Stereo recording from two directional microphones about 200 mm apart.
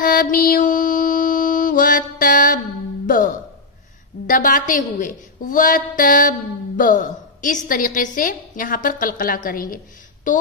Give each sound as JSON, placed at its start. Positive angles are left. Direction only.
{"t": 0.0, "sound": "music", "side_deg": 45}
{"t": 4.3, "sound": "a woman's voice", "side_deg": 40}